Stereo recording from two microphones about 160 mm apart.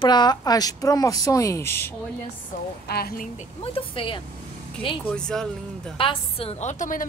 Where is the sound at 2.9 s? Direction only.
75° left (ahead or behind).